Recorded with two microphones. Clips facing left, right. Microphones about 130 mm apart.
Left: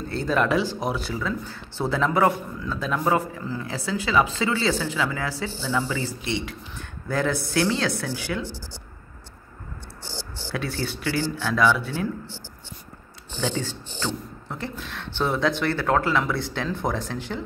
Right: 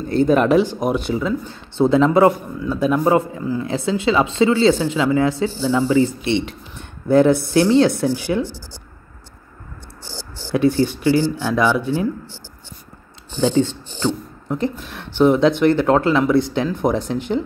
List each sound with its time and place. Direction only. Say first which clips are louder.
0.1 s speech: right 8 dB; 20° right (ahead or behind)
10.5 s speech: right 13 dB; 20° right (ahead or behind)
13.4 s speech: right 11 dB; 20° right (ahead or behind)